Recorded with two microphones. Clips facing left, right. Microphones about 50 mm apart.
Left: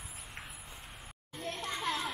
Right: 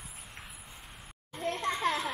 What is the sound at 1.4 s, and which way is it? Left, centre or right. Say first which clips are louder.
Children playing: right 7 dB; right.